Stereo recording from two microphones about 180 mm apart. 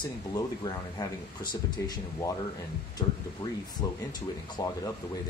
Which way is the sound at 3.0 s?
25° left (ahead or behind).